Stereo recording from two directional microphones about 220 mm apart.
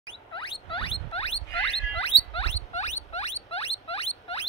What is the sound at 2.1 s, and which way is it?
Rodents, 50° left (ahead or behind).